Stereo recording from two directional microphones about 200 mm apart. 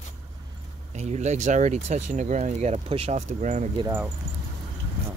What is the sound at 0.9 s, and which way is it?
Speech, 35° right (ahead or behind).